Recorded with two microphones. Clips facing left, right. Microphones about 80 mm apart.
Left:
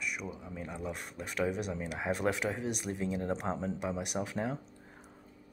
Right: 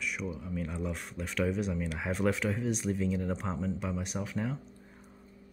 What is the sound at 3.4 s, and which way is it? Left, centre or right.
Speech, left.